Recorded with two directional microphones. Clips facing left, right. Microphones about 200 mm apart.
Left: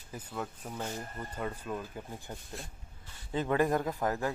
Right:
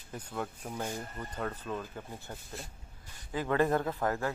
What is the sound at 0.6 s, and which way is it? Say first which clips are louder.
Speech: right 1 dB; 10° right (ahead or behind).